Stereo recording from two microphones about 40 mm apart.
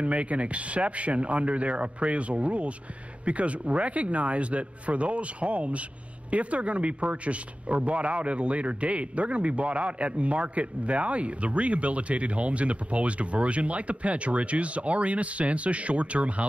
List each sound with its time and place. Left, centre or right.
0.0 s a man's voice: right